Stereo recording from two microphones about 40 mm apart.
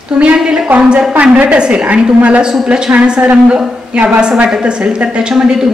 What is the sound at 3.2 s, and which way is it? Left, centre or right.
A woman's voice, right.